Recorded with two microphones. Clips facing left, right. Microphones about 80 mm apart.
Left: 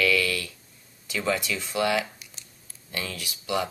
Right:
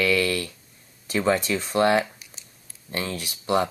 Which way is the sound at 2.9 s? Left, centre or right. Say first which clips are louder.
Right 4 dB; right.